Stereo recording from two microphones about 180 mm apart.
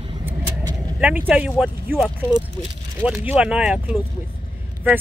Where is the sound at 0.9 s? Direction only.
5° right (ahead or behind).